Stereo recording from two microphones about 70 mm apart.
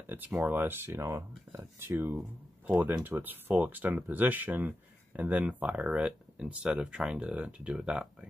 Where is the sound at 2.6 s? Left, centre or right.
Right.